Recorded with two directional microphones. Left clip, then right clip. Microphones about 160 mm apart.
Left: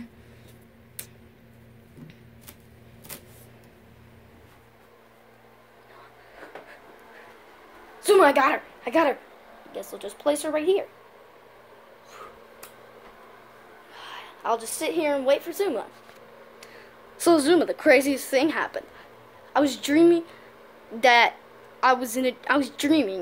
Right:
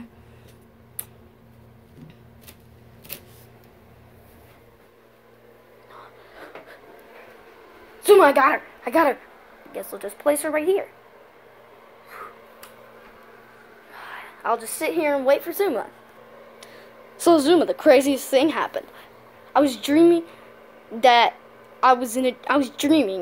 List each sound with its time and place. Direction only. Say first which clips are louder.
8.0 s a sound: right 4 dB; 5° right (ahead or behind)
8.8 s a woman's voice: right 3 dB; 10° right (ahead or behind)
10.4 s speech: right 3 dB; 5° right (ahead or behind)
13.9 s a woman's voice: right 3 dB; 5° left (ahead or behind)
16.5 s a sound: even; 15° right (ahead or behind)
17.2 s a woman's voice: right 3 dB; centre (ahead or behind)